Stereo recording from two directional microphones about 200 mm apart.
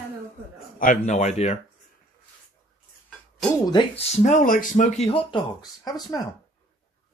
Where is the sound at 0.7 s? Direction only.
40° left (ahead or behind).